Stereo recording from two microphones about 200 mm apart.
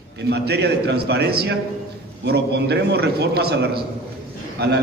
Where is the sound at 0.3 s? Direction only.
55° right (ahead or behind).